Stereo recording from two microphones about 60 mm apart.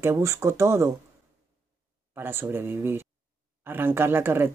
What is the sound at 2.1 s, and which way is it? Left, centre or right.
A woman's voice, right.